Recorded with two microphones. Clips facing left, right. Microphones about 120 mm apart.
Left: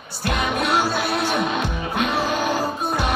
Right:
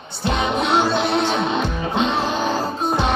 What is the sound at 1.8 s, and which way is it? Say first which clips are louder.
Music: right 2 dB; 25° right (ahead or behind).